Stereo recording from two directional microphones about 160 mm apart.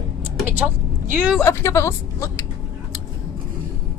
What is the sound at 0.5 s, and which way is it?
Vehicle, 10° right (ahead or behind).